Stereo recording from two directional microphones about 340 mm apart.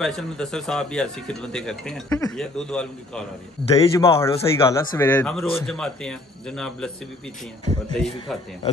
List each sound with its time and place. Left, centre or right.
0.0 s speech: centre
3.7 s a man's voice: centre
7.9 s speech: centre